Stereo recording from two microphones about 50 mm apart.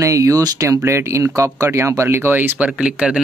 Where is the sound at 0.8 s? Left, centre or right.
Right.